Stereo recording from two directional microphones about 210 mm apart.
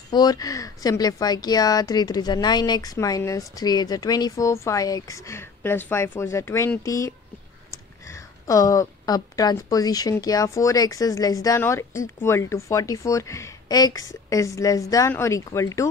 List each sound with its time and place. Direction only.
0.1 s speech: 20° left (ahead or behind)
8.5 s speech: 15° left (ahead or behind)